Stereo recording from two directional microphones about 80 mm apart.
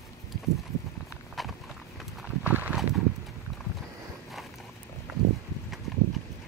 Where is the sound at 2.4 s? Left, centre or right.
Right.